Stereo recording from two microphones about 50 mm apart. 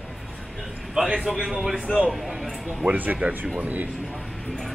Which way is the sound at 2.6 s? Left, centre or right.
Centre.